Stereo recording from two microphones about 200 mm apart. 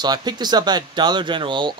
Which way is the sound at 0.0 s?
20° right (ahead or behind).